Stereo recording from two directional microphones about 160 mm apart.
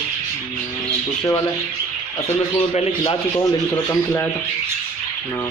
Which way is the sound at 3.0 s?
30° left (ahead or behind).